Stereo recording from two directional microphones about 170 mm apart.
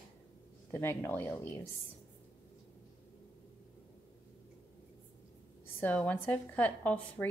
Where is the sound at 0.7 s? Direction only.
10° left (ahead or behind).